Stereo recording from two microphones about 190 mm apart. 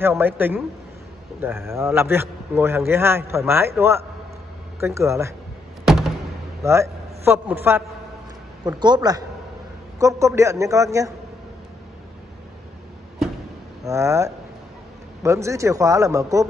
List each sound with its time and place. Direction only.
0.0 s a man's voice: 10° right (ahead or behind)
4.7 s a man's voice: 15° right (ahead or behind)
5.9 s a sound: centre (ahead or behind)
6.6 s a man's voice: 15° right (ahead or behind)
8.6 s a man's voice: 25° right (ahead or behind)
13.8 s a man's voice: 15° right (ahead or behind)